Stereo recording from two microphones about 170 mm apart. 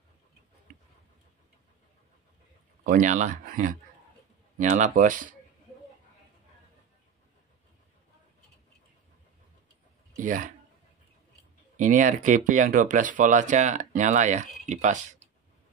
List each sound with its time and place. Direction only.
2.8 s speech: 50° right (ahead or behind)
10.1 s speech: 50° right (ahead or behind)
11.7 s speech: 50° right (ahead or behind)